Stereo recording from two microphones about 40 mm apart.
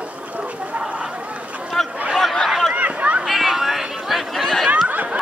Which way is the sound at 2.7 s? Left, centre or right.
Right.